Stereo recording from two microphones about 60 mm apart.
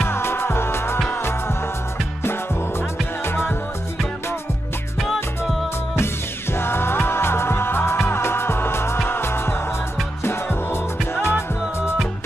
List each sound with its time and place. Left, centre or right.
0.0 s music: left
5.0 s music: centre
6.5 s music: left